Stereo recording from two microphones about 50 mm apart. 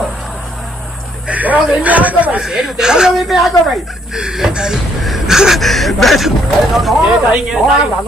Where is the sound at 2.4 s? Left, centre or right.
Centre.